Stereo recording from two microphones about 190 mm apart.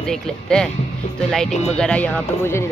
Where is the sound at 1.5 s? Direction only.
35° left (ahead or behind).